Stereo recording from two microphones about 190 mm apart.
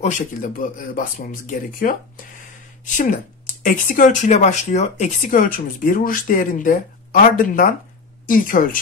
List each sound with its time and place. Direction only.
0.0 s speech: 45° left (ahead or behind)